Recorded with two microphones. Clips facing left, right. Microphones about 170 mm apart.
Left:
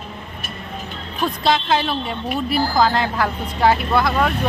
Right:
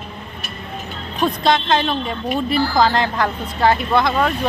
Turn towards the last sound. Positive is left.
turn(degrees=5)  # may be behind; listen again after turning